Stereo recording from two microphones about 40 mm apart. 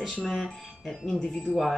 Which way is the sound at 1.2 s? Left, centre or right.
Centre.